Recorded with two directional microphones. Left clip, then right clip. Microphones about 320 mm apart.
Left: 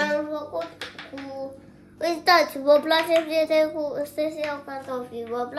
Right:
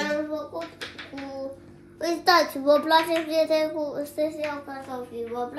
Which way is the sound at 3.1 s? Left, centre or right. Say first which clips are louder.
Left 2 dB; centre.